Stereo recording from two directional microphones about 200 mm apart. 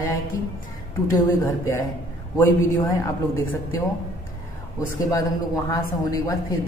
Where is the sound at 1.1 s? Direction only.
15° left (ahead or behind).